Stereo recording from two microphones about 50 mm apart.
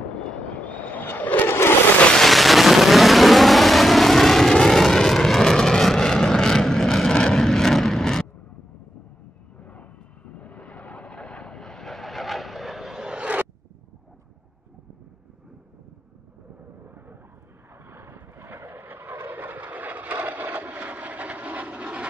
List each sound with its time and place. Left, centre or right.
0.6 s vehicle: left
1.5 s a sound: left
2.1 s a sound: centre
4.6 s vehicle: centre
9.6 s vehicle: left
11.5 s vehicle: centre
12.9 s vehicle: centre
16.8 s vehicle: right